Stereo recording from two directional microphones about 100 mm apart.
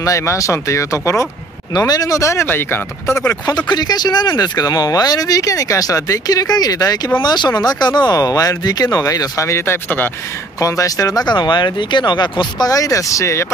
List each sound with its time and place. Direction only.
0.0 s speech: 30° left (ahead or behind)
3.5 s speech: 45° left (ahead or behind); by 10.1 s 20° left (ahead or behind)
10.6 s speech: 35° left (ahead or behind)